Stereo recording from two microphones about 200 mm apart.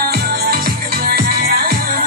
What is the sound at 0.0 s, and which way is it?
Music, 50° right (ahead or behind).